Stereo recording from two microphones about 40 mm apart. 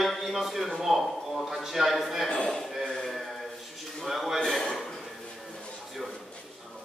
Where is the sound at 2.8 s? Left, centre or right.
Centre.